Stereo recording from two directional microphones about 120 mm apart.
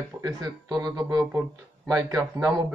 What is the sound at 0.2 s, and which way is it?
Speech, 35° right (ahead or behind).